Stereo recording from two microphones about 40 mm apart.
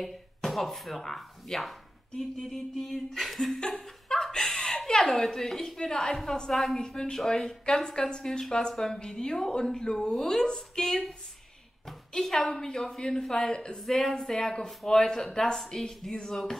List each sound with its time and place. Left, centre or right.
0.0 s speech: centre
3.7 s chuckle: centre
5.8 s a woman's voice: centre
6.5 s speech: centre
6.8 s speech: centre
12.4 s speech: centre
13.7 s speech: centre